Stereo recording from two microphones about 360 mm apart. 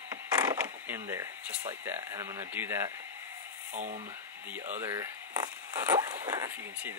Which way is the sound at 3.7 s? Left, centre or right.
Right.